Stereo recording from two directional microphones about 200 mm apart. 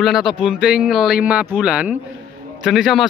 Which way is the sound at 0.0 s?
Centre (ahead or behind).